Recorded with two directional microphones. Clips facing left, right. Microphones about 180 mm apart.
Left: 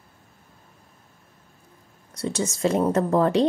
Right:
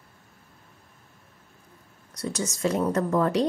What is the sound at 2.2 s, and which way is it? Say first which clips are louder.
Speech: left 4 dB; 25° left (ahead or behind).